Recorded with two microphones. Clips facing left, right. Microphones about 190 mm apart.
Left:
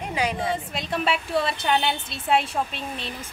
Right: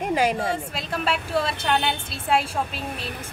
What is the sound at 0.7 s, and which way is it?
A woman's voice, centre (ahead or behind).